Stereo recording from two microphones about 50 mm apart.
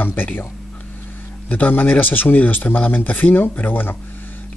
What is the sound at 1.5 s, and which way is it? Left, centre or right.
Speech, left.